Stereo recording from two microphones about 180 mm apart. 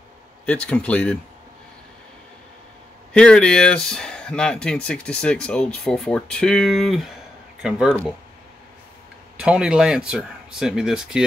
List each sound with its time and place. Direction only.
0.5 s speech: 5° left (ahead or behind)
3.1 s speech: 5° left (ahead or behind)
9.4 s speech: 5° right (ahead or behind)